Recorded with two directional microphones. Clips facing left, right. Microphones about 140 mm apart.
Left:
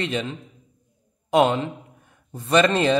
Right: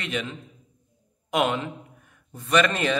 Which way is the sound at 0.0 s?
30° left (ahead or behind).